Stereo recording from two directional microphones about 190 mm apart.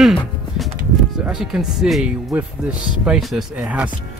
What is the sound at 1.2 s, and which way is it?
Speech, 5° right (ahead or behind).